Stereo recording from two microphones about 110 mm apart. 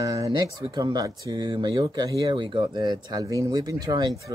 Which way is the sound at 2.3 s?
50° right (ahead or behind).